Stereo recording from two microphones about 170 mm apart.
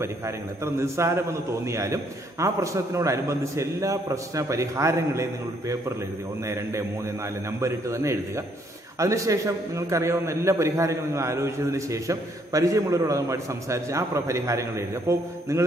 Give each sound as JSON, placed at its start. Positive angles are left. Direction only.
{"t": 0.7, "sound": "a man's voice", "side_deg": -15}
{"t": 7.6, "sound": "a man's voice", "side_deg": -15}